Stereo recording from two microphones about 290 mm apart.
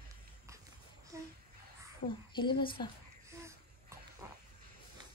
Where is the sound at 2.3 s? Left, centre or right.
Centre.